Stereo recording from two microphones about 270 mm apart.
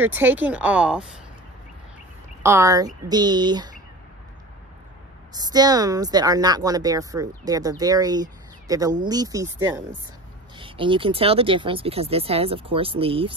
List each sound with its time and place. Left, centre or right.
0.0 s speech: centre
2.4 s speech: centre
5.3 s speech: centre